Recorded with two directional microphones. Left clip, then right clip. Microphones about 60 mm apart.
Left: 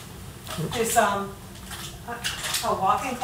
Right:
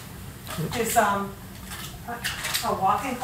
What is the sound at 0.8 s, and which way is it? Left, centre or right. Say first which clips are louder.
Speech: even; centre.